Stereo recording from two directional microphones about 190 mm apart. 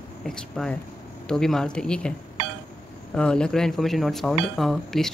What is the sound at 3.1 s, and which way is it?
Speech, 5° left (ahead or behind).